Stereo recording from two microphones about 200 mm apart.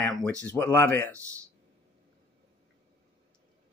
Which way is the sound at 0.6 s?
10° left (ahead or behind).